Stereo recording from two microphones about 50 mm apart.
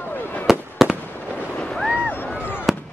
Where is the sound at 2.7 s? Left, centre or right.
Centre.